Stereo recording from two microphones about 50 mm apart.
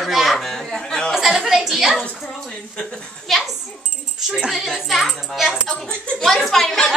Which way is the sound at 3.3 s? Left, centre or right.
Centre.